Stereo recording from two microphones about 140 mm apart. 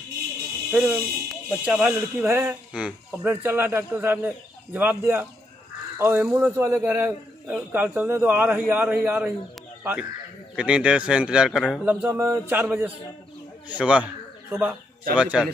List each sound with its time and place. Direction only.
0.7 s speech: 5° right (ahead or behind)
2.2 s speech: 15° right (ahead or behind)
10.5 s speech: 10° right (ahead or behind)